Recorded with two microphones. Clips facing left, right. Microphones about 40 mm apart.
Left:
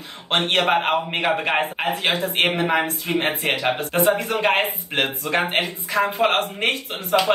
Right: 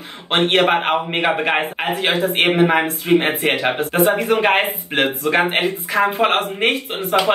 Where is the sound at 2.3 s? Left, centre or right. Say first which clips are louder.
Right 6 dB; centre.